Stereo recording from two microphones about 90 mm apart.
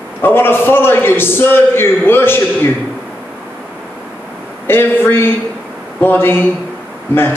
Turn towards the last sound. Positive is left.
turn(degrees=25)  # may be behind; listen again after turning